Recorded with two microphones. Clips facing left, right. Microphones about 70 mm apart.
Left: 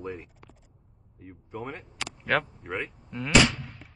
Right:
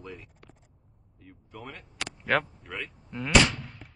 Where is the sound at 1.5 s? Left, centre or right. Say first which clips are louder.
Left 6 dB; left.